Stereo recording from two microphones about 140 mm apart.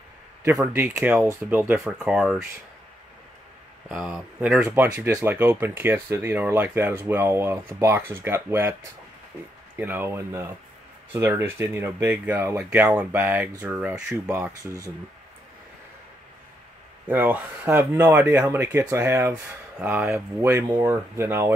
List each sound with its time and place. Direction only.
0.4 s speech: 20° right (ahead or behind)
0.9 s speech: 10° right (ahead or behind)
3.9 s speech: 5° right (ahead or behind)
9.8 s speech: 15° right (ahead or behind)
17.1 s speech: 10° right (ahead or behind)